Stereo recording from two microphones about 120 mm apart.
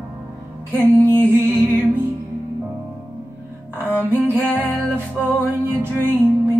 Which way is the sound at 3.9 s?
15° left (ahead or behind).